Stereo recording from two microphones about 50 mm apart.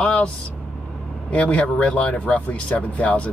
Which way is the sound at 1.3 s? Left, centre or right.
Left.